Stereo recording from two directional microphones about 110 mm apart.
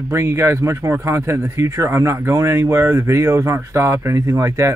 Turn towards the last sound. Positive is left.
turn(degrees=-25)  # may be behind; listen again after turning